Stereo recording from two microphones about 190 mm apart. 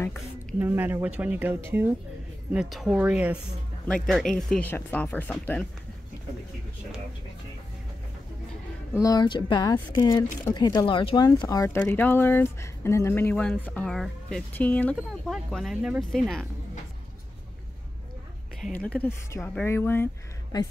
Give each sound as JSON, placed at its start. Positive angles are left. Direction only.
{"t": 0.0, "sound": "a sound", "side_deg": 10}
{"t": 0.6, "sound": "speech", "side_deg": -10}
{"t": 2.5, "sound": "speech", "side_deg": 0}
{"t": 3.8, "sound": "speech", "side_deg": 5}
{"t": 8.9, "sound": "speech", "side_deg": 20}
{"t": 18.6, "sound": "speech", "side_deg": 5}